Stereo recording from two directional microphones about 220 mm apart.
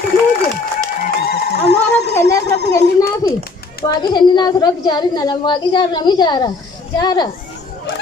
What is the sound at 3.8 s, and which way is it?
A woman's voice, 20° left (ahead or behind).